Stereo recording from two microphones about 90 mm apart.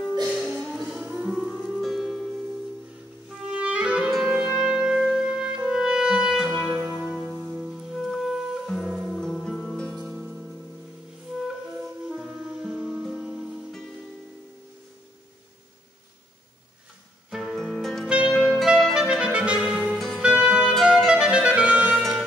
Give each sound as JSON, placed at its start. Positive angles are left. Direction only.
{"t": 0.6, "sound": "music", "side_deg": 5}
{"t": 0.8, "sound": "music", "side_deg": -10}
{"t": 1.3, "sound": "music", "side_deg": 0}
{"t": 3.5, "sound": "music", "side_deg": -10}
{"t": 6.7, "sound": "music", "side_deg": -15}
{"t": 7.0, "sound": "music", "side_deg": -5}
{"t": 9.9, "sound": "music", "side_deg": -10}
{"t": 12.1, "sound": "music", "side_deg": -5}
{"t": 17.3, "sound": "music", "side_deg": 0}
{"t": 18.0, "sound": "music", "side_deg": -10}
{"t": 18.4, "sound": "clarinet", "side_deg": -5}
{"t": 19.0, "sound": "clarinet", "side_deg": -15}
{"t": 20.2, "sound": "music", "side_deg": -10}